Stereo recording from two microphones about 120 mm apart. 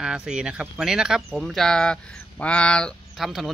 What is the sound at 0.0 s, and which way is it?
Speech, 5° right (ahead or behind).